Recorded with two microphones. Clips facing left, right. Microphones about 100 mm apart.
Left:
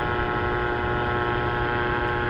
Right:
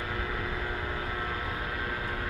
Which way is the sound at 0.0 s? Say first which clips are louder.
Left 9 dB; 60° left (ahead or behind).